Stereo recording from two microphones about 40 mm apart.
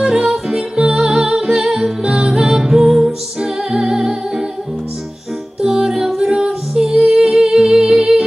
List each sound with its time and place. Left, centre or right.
0.0 s music: centre
0.5 s music: centre
5.6 s music: centre